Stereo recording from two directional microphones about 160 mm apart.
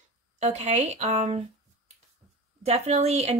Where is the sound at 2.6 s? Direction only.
40° right (ahead or behind).